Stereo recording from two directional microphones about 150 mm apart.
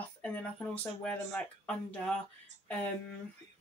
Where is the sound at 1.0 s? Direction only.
10° left (ahead or behind).